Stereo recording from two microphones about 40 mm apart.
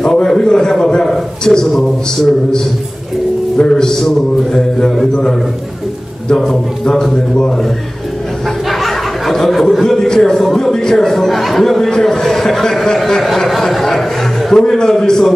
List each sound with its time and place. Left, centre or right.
0.0 s a sound: centre
1.4 s speech: centre
3.5 s mantra: centre
6.3 s speech: centre
8.6 s a sound: centre
10.0 s speech: centre
14.5 s speech: centre